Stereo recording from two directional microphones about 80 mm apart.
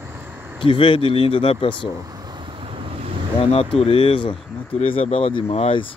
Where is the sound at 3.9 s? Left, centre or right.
Left.